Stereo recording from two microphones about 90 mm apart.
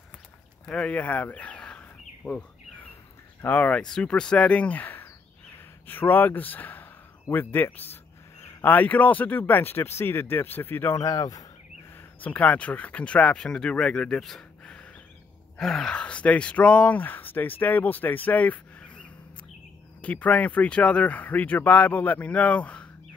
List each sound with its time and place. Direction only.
0.7 s a sound: 15° left (ahead or behind)
3.4 s speech: 15° left (ahead or behind)
5.9 s a sound: 20° left (ahead or behind)
8.6 s speech: 20° left (ahead or behind)
11.0 s speech: 40° left (ahead or behind)
12.2 s speech: 15° left (ahead or behind)